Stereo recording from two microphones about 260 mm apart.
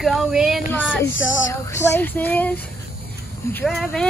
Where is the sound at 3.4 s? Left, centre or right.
Centre.